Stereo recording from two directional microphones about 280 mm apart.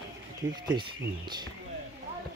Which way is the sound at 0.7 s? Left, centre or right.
Centre.